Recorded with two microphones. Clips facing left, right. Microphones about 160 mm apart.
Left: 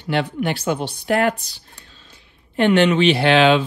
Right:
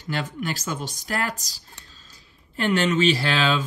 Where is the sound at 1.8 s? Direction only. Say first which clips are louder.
Left 4 dB; 40° right (ahead or behind).